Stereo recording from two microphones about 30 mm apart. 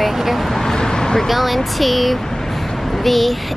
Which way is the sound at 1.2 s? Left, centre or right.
Centre.